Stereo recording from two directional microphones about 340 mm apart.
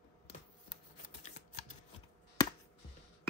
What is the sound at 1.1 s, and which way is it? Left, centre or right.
Typing, centre.